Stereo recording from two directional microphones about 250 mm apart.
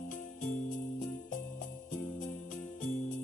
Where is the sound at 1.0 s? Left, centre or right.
Left.